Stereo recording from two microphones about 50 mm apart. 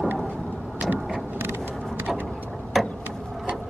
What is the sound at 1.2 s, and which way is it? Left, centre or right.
Vehicle, right.